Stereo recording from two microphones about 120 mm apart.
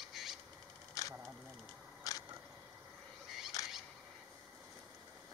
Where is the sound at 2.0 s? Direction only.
30° left (ahead or behind).